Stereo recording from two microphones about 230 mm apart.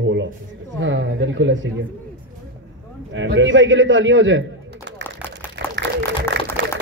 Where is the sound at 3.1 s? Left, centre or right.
Right.